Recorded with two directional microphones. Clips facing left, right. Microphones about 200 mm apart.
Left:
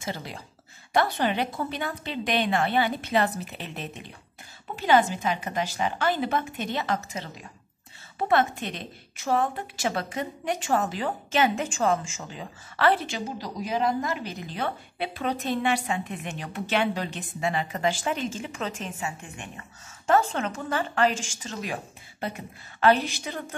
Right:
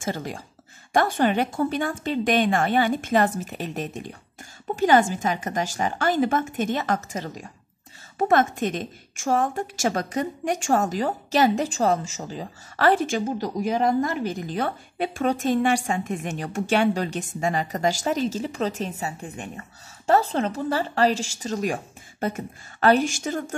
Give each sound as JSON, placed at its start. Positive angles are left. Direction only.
{"t": 0.0, "sound": "a woman's voice", "side_deg": -50}